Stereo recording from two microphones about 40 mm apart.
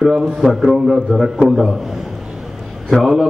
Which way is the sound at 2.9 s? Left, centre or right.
Centre.